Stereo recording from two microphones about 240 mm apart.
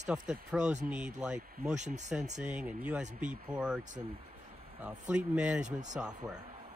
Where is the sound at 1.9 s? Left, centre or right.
Right.